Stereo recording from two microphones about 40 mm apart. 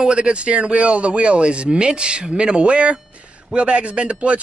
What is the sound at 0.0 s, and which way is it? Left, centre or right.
Speech, right.